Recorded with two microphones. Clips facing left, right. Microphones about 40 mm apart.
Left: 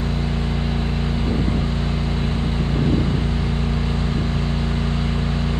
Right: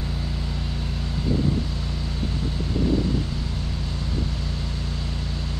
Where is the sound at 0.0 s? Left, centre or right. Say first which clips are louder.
Left 7 dB; left.